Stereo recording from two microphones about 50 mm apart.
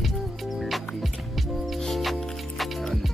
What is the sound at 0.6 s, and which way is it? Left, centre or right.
Music, centre.